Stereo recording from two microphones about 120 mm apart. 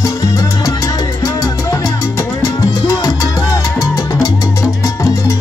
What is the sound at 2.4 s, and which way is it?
Salsa music, 30° left (ahead or behind).